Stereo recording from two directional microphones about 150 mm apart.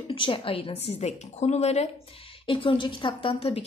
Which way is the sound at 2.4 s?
35° left (ahead or behind).